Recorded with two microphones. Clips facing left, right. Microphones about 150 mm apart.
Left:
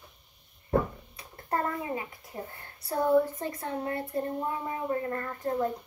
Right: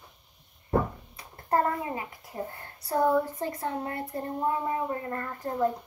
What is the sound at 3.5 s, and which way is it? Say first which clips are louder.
A woman's voice: even; 35° right (ahead or behind).